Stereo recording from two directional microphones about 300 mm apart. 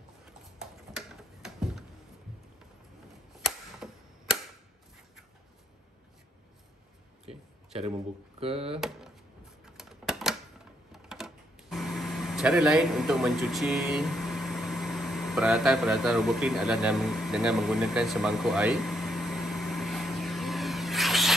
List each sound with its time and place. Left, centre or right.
0.9 s tick-tock: centre
3.4 s camera: centre
7.2 s a sound: centre
8.4 s speech: centre
9.8 s typewriter: centre
10.9 s a sound: centre